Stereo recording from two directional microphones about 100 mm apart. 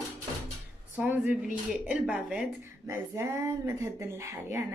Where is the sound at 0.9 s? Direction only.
15° right (ahead or behind).